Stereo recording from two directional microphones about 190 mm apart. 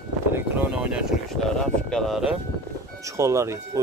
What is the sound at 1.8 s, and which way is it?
Speech, centre (ahead or behind).